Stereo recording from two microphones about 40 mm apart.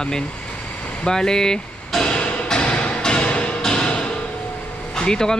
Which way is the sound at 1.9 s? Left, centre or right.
Centre.